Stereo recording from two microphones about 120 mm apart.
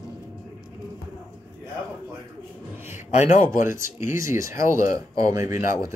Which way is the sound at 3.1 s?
80° left.